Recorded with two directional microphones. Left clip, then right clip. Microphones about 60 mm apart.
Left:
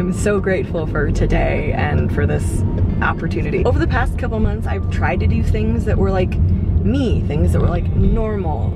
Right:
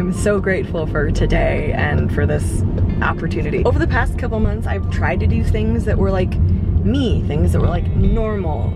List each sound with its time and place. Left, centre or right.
0.2 s speech: right
7.6 s speech: centre